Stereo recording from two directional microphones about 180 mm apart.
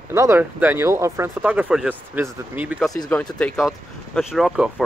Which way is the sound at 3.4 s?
5° left (ahead or behind).